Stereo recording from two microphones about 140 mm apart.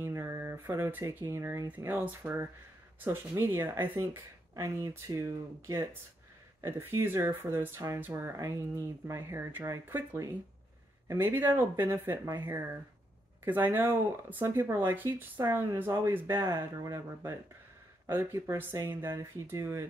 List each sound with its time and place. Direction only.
0.0 s speech: 20° right (ahead or behind)
13.4 s speech: 15° right (ahead or behind)